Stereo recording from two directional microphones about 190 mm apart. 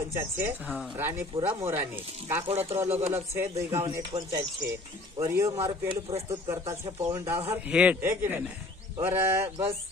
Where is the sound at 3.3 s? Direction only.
15° right (ahead or behind).